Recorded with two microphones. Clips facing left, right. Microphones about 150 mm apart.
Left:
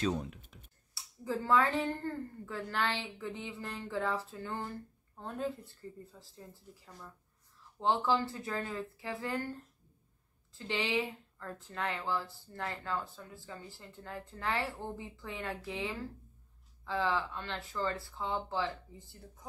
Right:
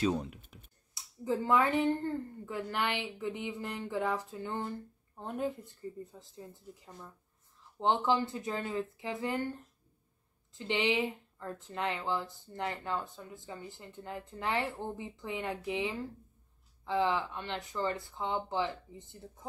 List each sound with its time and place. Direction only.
0.0 s speech: 10° right (ahead or behind)
0.9 s speech: 20° right (ahead or behind)